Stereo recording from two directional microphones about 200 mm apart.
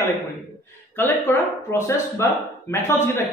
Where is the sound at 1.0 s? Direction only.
10° left (ahead or behind).